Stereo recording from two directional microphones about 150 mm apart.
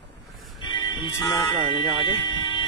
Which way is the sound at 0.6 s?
30° left (ahead or behind).